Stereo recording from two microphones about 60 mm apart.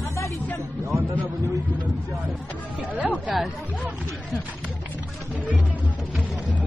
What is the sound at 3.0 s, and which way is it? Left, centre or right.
Speech, right.